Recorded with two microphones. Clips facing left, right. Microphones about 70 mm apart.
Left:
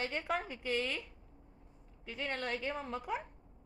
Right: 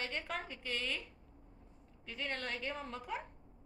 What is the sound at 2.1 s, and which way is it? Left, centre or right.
A woman's voice, centre.